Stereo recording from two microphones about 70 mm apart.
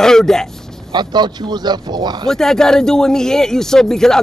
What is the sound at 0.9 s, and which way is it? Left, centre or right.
Speech, right.